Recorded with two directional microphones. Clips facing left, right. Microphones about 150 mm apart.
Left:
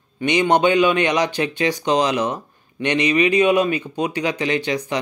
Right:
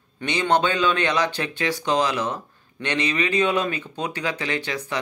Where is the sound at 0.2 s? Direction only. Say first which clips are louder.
Left 5 dB; 15° left (ahead or behind).